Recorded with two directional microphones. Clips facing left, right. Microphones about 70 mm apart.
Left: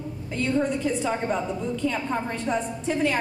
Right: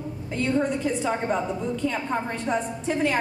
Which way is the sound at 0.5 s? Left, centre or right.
Right.